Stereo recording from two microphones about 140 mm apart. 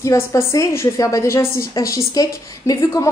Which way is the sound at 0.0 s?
20° left (ahead or behind).